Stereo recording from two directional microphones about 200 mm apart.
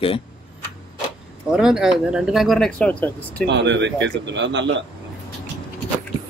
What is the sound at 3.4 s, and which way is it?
Speech, 60° right (ahead or behind).